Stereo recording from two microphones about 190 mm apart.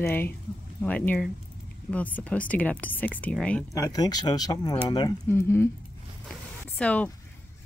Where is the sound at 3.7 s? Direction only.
20° left (ahead or behind).